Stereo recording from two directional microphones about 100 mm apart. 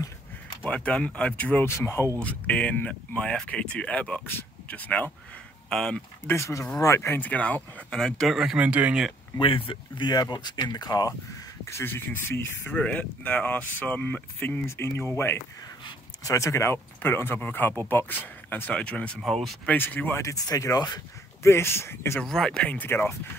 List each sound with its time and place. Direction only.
0.7 s speech: 10° left (ahead or behind)
1.7 s speech: 25° left (ahead or behind)
2.1 s speech: 10° left (ahead or behind)
6.2 s speech: 30° left (ahead or behind); by 8.5 s centre (ahead or behind)
8.5 s speech: 15° right (ahead or behind)
9.4 s speech: 60° left (ahead or behind); by 11.1 s 40° left (ahead or behind)
11.6 s speech: 25° left (ahead or behind)
12.7 s speech: 15° left (ahead or behind)
19.6 s speech: 15° left (ahead or behind)
20.2 s speech: 35° left (ahead or behind)
21.4 s speech: 25° left (ahead or behind)
22.2 s speech: 5° left (ahead or behind); by 23.1 s 20° left (ahead or behind)